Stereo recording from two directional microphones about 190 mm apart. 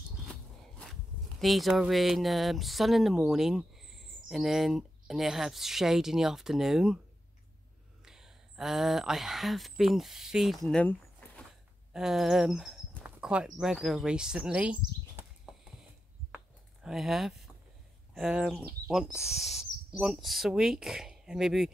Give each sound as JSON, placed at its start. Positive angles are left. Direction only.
{"t": 1.4, "sound": "speech", "side_deg": 0}
{"t": 8.0, "sound": "speech", "side_deg": -5}
{"t": 16.8, "sound": "speech", "side_deg": 0}